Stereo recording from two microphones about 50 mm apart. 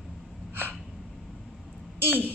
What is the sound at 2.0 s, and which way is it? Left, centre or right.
Speech, right.